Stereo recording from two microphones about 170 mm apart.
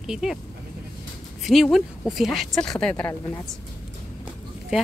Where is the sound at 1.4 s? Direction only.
Centre (ahead or behind).